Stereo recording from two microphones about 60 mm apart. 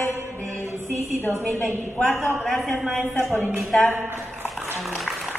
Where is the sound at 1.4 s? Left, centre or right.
Left.